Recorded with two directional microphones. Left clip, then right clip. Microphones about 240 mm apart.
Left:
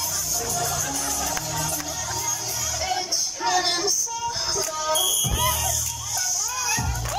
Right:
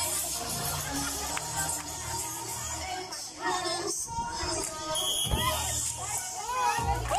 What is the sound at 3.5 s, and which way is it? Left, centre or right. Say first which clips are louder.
Child singing: left 9 dB; left.